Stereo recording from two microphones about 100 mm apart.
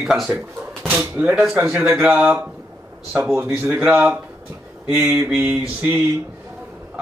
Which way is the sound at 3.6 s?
20° right (ahead or behind).